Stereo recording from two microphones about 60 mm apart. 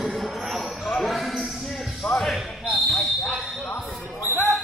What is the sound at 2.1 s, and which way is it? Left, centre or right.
Speech, centre.